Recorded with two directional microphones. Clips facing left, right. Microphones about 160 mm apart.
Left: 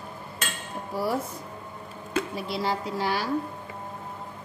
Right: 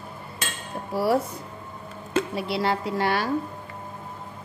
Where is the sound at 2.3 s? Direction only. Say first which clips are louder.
Right 3 dB; 70° right (ahead or behind).